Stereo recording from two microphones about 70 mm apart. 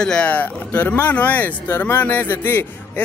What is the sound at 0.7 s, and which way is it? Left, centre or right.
Speech, left.